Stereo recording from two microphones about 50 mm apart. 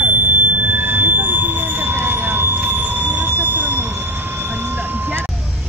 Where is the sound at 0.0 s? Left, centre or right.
Right.